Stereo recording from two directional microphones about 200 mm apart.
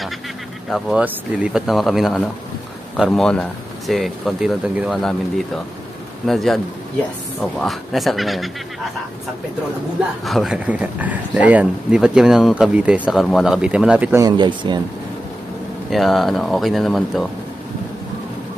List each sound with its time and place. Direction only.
0.7 s speech: centre (ahead or behind)
6.2 s speech: centre (ahead or behind)
10.2 s speech: centre (ahead or behind)
14.2 s speech: 20° right (ahead or behind)
15.9 s speech: centre (ahead or behind)